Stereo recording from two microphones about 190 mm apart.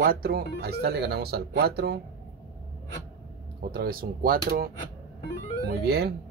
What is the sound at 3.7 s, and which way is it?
Speech, 50° right (ahead or behind).